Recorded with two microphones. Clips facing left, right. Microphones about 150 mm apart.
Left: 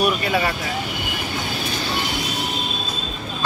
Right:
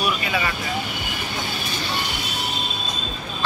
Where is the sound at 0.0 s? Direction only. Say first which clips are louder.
Left 4 dB; 55° left (ahead or behind).